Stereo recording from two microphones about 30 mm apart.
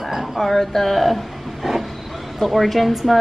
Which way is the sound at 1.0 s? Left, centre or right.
Centre.